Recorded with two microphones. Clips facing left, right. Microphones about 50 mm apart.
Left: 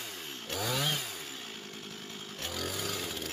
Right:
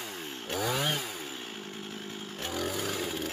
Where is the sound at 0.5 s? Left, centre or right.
Centre.